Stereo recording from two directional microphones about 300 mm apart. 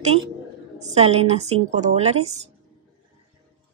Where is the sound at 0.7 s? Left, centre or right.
Right.